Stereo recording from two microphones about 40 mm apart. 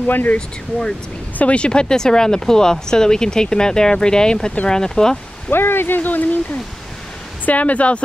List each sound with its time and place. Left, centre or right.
0.0 s speech: left
1.4 s speech: left
5.5 s speech: left